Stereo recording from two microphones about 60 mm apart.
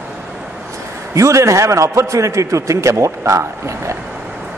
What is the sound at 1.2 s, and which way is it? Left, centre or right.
A man's voice, right.